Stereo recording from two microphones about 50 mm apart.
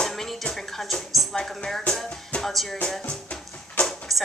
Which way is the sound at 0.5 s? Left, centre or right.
Centre.